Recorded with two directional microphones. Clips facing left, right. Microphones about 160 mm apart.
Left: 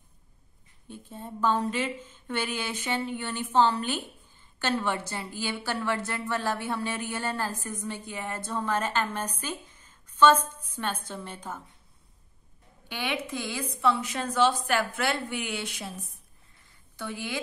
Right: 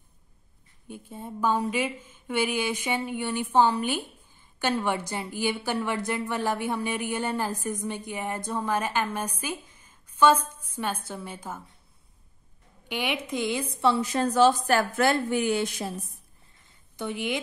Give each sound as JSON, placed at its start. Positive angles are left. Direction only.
{"t": 0.8, "sound": "speech", "side_deg": -15}
{"t": 12.8, "sound": "a woman's voice", "side_deg": -15}
{"t": 16.9, "sound": "speech", "side_deg": -20}